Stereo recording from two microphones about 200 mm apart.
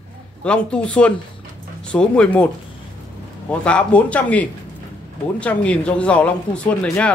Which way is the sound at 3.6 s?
5° left (ahead or behind).